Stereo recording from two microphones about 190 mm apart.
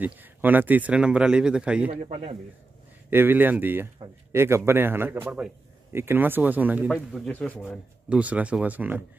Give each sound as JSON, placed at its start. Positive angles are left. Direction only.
{"t": 0.0, "sound": "speech", "side_deg": -10}
{"t": 1.9, "sound": "speech", "side_deg": -30}
{"t": 3.1, "sound": "a man's voice", "side_deg": -10}
{"t": 7.1, "sound": "speech", "side_deg": 5}
{"t": 8.1, "sound": "a man's voice", "side_deg": -5}